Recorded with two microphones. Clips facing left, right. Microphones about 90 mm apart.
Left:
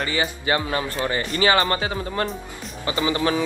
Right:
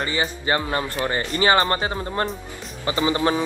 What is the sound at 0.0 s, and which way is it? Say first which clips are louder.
Speech: even; 30° right (ahead or behind).